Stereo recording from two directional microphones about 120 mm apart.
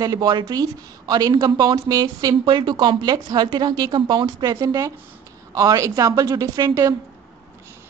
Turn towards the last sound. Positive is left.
turn(degrees=-30)  # may be behind; listen again after turning